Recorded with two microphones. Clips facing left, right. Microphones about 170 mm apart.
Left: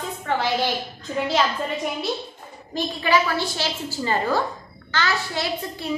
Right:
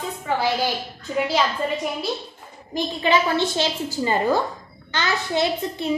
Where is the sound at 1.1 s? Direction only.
5° right (ahead or behind).